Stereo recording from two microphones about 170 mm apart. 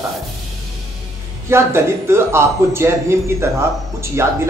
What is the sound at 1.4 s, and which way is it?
Speech, 15° right (ahead or behind).